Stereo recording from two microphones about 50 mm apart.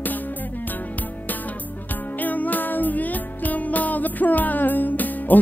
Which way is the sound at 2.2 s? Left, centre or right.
Left.